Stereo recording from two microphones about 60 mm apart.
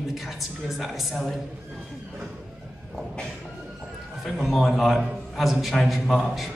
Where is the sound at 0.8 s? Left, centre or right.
Centre.